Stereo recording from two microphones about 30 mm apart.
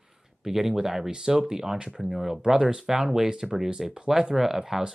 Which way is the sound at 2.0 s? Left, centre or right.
Centre.